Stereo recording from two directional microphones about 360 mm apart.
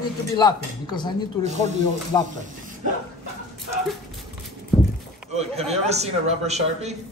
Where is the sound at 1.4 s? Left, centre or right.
Centre.